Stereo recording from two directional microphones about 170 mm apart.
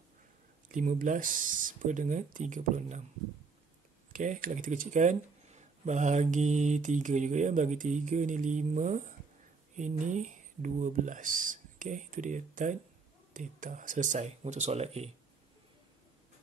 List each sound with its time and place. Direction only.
0.7 s speech: 50° right (ahead or behind)
4.1 s speech: 50° right (ahead or behind)